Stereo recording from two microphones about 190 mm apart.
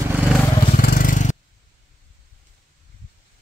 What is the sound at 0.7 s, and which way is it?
Vehicle, 50° left (ahead or behind).